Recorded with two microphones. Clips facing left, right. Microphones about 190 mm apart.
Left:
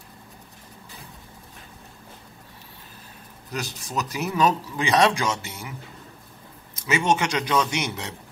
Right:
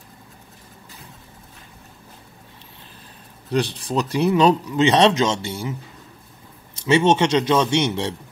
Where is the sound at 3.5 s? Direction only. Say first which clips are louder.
Right 9 dB; 30° right (ahead or behind).